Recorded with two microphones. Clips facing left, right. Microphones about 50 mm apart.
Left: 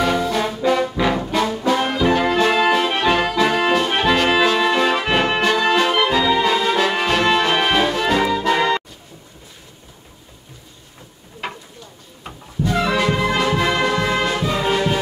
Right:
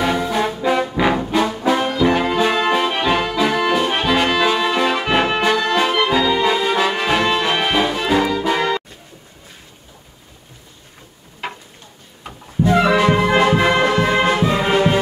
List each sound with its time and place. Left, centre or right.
0.0 s trombone: centre
1.3 s brass instrument: centre
2.0 s music: centre
2.7 s accordion: centre
4.6 s music: centre
11.4 s a sound: centre
12.6 s music: right